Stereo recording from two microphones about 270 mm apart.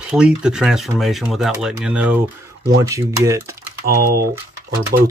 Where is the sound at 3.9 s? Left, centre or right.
Right.